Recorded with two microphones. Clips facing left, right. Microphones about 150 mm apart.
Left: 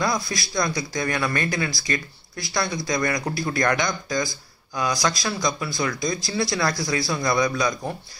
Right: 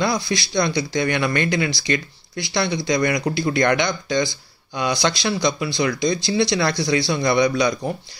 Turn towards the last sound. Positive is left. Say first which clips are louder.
# right 4 dB
turn(degrees=-25)  # may be behind; listen again after turning